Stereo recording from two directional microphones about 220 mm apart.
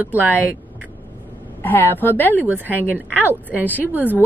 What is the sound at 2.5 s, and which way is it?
Speech, 10° right (ahead or behind).